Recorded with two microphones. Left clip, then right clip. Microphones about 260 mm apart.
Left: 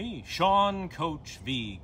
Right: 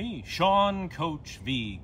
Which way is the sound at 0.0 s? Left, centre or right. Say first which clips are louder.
Right 1 dB; centre.